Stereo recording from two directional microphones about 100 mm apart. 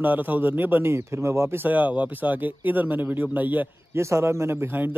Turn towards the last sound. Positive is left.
turn(degrees=-20)  # may be behind; listen again after turning